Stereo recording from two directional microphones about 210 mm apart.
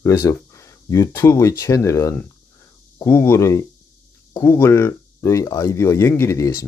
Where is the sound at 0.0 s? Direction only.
15° left (ahead or behind).